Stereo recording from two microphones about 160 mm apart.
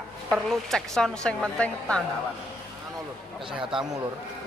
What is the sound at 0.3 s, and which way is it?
A woman's voice, centre (ahead or behind).